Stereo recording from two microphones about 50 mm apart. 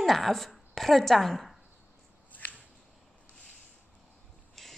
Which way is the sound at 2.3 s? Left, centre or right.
Left.